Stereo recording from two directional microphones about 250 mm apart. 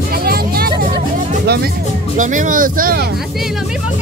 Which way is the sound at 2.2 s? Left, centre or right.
Right.